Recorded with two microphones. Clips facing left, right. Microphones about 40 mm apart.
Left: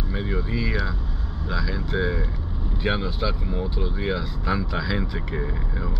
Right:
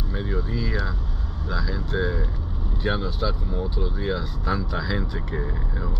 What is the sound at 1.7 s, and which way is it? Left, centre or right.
Speech, left.